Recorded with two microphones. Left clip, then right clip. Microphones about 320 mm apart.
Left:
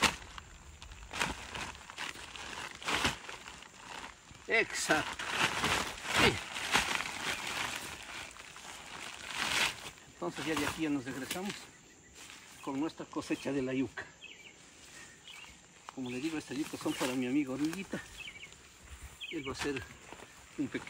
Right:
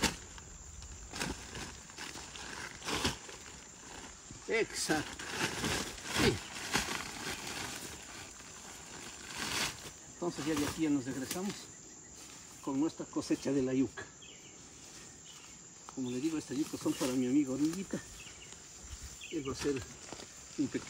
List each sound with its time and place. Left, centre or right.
1.1 s horse: centre
2.4 s a sound: centre
2.8 s a sound: centre
12.6 s speech: centre
15.9 s speech: centre
19.4 s speech: centre